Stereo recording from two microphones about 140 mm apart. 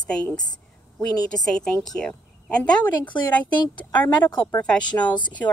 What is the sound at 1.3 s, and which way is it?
Speech, 5° left (ahead or behind).